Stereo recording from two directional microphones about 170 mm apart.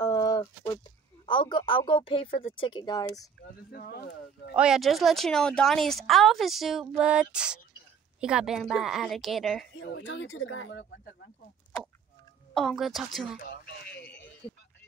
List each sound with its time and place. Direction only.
0.0 s a sound: 20° left (ahead or behind)
1.2 s speech: 30° left (ahead or behind)
3.7 s speech: 65° left (ahead or behind); by 4.5 s 80° left
4.6 s speech: centre (ahead or behind)
9.8 s speech: 90° left
12.5 s speech: centre (ahead or behind)
13.4 s a sound: 70° left (ahead or behind)